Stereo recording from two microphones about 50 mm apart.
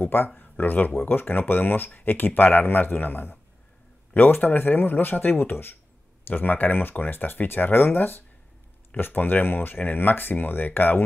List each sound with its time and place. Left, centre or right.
0.0 s a man's voice: left